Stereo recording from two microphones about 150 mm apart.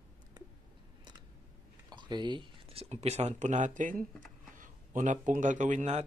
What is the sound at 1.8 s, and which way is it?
Speech, 30° right (ahead or behind).